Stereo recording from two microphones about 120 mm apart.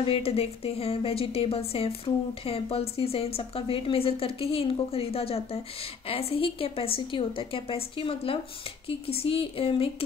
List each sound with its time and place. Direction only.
0.0 s a woman's voice: 55° left (ahead or behind)